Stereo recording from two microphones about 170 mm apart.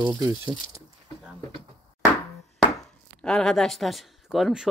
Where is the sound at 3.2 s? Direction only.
5° left (ahead or behind).